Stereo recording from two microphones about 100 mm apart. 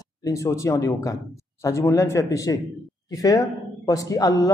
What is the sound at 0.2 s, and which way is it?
A man's voice, 30° left (ahead or behind).